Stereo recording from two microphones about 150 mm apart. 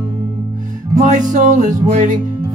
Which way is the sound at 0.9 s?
60° right (ahead or behind).